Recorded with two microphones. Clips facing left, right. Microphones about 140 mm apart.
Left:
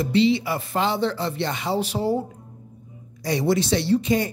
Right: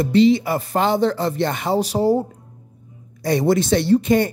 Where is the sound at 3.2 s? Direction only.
50° right (ahead or behind).